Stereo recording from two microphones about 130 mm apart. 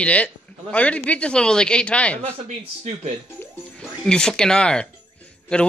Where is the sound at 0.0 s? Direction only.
10° left (ahead or behind).